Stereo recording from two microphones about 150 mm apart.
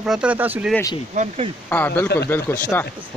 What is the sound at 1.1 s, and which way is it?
Speech, 50° right (ahead or behind).